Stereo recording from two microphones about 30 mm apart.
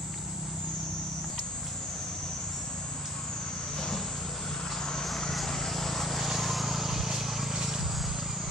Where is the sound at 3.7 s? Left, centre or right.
Centre.